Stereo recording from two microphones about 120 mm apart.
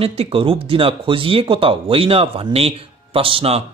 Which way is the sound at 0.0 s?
55° right (ahead or behind).